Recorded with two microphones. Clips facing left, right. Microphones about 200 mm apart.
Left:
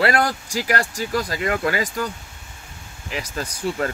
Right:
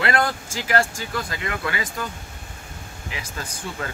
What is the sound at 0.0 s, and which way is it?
Speech, 40° left (ahead or behind).